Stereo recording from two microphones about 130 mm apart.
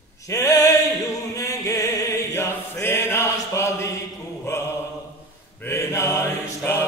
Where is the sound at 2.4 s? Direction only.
20° left (ahead or behind).